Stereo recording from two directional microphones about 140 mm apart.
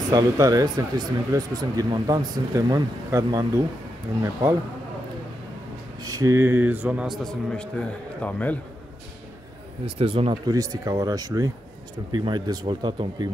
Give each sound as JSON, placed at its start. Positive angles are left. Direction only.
{"t": 0.1, "sound": "speech", "side_deg": -25}
{"t": 5.9, "sound": "speech", "side_deg": -25}
{"t": 7.2, "sound": "a man's voice", "side_deg": 5}
{"t": 9.8, "sound": "speech", "side_deg": -40}
{"t": 10.4, "sound": "speech", "side_deg": -25}